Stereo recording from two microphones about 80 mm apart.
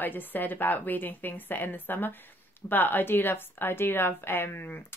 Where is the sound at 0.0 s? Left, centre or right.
Left.